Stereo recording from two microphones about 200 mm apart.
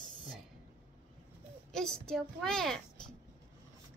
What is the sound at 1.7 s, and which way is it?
A child's voice, 5° left (ahead or behind).